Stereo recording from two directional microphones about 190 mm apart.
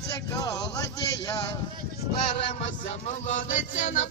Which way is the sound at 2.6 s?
35° left (ahead or behind).